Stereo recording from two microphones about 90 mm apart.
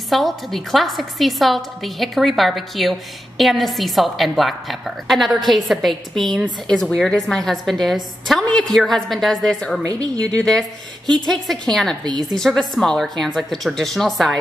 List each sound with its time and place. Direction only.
0.1 s a woman's voice: centre (ahead or behind)
9.8 s a woman's voice: 45° right (ahead or behind)
10.2 s a woman's voice: 5° left (ahead or behind)
12.0 s a woman's voice: 50° right (ahead or behind)
12.4 s a woman's voice: 5° left (ahead or behind)